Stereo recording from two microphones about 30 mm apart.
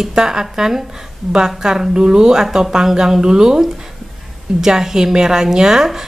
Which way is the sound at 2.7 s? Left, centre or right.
Centre.